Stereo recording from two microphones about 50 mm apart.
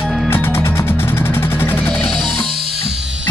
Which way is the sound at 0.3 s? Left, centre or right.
Left.